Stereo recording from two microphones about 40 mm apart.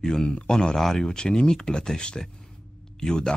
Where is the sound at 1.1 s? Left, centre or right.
Centre.